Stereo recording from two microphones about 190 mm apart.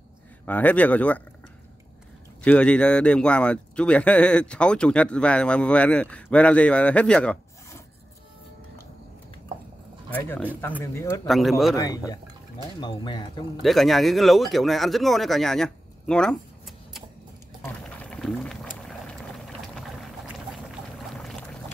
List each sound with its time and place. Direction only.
0.5 s speech: 10° left (ahead or behind)
2.4 s a man's voice: 5° left (ahead or behind)
10.1 s speech: 10° left (ahead or behind)
11.2 s a man's voice: centre (ahead or behind)
11.7 s speech: 20° left (ahead or behind)
13.6 s speech: centre (ahead or behind)
17.6 s boiling: 5° left (ahead or behind)
21.1 s boat: centre (ahead or behind)